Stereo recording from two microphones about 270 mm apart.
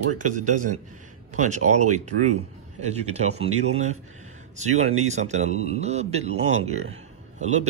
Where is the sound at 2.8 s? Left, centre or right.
Right.